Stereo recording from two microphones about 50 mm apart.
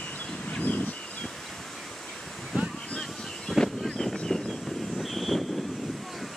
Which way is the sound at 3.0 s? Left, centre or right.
Centre.